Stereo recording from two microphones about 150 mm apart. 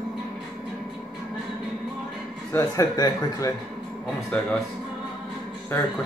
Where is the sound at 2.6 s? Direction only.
25° left (ahead or behind).